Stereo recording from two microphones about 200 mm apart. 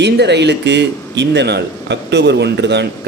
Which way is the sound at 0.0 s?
60° right (ahead or behind).